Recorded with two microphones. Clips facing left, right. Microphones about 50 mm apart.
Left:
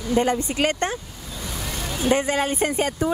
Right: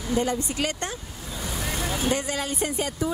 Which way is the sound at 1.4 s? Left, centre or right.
Centre.